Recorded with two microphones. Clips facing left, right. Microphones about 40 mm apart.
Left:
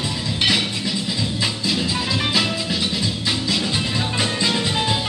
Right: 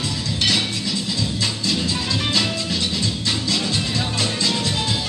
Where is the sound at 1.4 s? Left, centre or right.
Centre.